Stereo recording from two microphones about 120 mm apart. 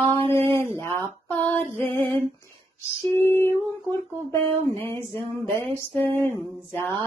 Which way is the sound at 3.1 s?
20° left (ahead or behind).